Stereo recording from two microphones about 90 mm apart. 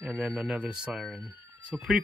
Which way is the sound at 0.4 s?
10° right (ahead or behind).